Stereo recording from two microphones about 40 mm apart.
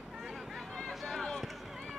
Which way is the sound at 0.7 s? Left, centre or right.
Centre.